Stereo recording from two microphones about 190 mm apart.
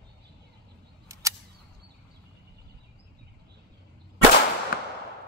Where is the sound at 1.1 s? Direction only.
15° right (ahead or behind).